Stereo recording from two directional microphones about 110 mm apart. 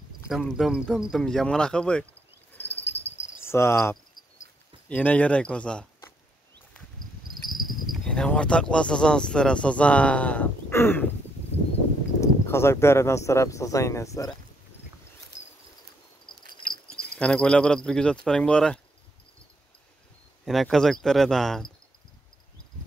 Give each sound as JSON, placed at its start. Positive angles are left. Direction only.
{"t": 0.3, "sound": "speech", "side_deg": 0}
{"t": 2.7, "sound": "cricket", "side_deg": 70}
{"t": 3.4, "sound": "cricket", "side_deg": 25}
{"t": 4.8, "sound": "speech", "side_deg": 10}
{"t": 7.9, "sound": "speech", "side_deg": 5}
{"t": 12.2, "sound": "speech", "side_deg": 25}
{"t": 17.2, "sound": "speech", "side_deg": 10}
{"t": 20.4, "sound": "speech", "side_deg": 5}